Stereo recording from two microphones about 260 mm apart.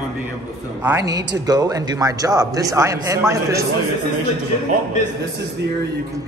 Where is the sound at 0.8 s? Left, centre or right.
Centre.